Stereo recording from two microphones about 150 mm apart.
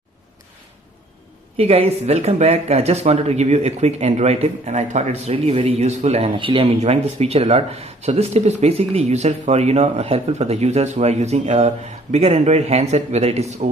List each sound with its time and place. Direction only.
1.6 s speech: 40° right (ahead or behind)
6.8 s speech: 45° right (ahead or behind)